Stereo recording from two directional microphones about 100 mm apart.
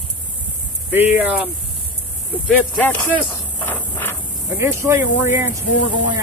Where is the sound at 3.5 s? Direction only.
20° left (ahead or behind).